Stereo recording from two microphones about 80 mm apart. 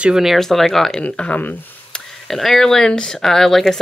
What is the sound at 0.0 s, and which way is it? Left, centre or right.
Speech, centre.